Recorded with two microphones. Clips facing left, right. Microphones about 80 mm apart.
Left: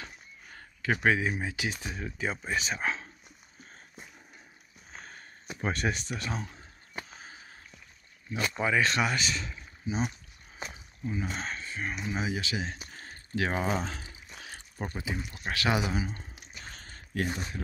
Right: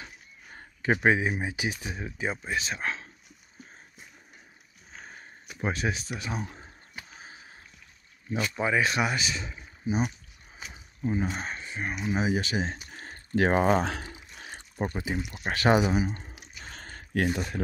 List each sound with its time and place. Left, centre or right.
0.6 s speech: right; by 3.1 s centre
5.6 s speech: centre
8.3 s speech: centre
11.0 s speech: right
11.2 s speech: centre
12.3 s speech: right
13.8 s speech: right
14.4 s a sound: right
15.4 s speech: right
15.9 s speech: centre
16.7 s a sound: right